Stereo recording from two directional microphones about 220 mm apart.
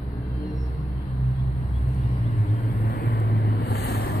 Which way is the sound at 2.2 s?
30° left (ahead or behind).